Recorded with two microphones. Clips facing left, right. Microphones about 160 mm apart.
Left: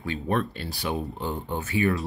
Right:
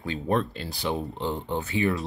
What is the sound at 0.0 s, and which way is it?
Speech, 30° right (ahead or behind).